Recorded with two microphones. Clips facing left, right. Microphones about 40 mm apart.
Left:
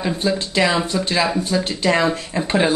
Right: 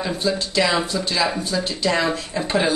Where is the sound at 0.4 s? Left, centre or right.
Left.